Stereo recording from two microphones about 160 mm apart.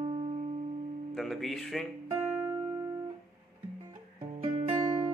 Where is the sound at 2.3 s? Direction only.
15° right (ahead or behind).